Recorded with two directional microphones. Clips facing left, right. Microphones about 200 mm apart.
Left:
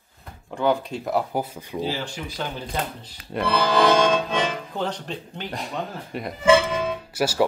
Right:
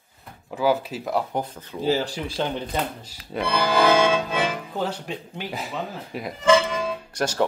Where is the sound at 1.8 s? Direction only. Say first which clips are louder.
Right 7 dB; 40° right (ahead or behind).